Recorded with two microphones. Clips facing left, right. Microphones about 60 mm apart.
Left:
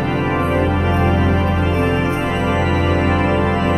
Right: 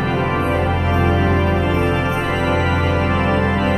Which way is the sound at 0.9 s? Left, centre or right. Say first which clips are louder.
Even; right.